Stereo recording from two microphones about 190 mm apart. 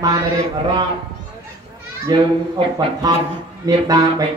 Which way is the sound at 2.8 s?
20° right (ahead or behind).